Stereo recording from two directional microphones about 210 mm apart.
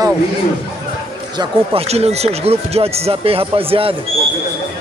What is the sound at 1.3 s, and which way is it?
Speech, 20° right (ahead or behind).